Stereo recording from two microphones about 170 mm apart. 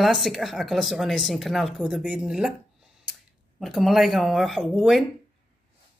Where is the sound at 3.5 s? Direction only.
Centre (ahead or behind).